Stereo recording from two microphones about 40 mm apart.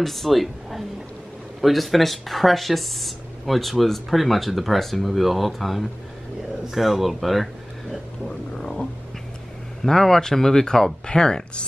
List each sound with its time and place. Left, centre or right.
0.0 s speech: centre
8.5 s a sound: centre
9.8 s speech: centre